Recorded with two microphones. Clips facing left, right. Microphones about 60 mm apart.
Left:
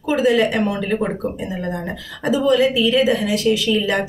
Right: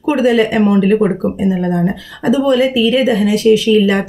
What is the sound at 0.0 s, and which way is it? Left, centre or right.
Speech, right.